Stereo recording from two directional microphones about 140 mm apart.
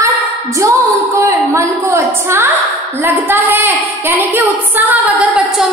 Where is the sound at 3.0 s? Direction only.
15° right (ahead or behind).